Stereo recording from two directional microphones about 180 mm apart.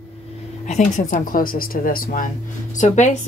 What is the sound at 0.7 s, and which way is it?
A woman's voice, 40° left (ahead or behind).